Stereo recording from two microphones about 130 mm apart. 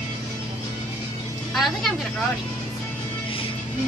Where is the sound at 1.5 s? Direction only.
Centre (ahead or behind).